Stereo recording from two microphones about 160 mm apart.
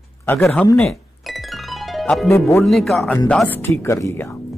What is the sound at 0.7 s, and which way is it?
Music, 5° left (ahead or behind).